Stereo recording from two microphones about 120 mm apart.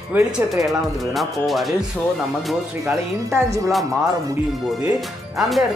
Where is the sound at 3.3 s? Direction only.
25° right (ahead or behind).